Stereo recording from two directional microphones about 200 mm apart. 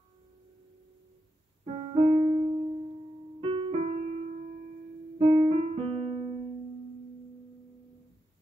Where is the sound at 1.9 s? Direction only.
20° right (ahead or behind).